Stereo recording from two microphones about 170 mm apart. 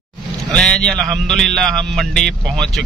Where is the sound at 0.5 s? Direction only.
5° left (ahead or behind).